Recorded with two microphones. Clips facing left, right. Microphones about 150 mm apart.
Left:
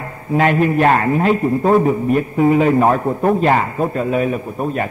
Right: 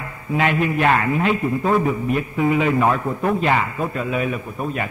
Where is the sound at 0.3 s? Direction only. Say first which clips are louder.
Left 5 dB; 40° left (ahead or behind).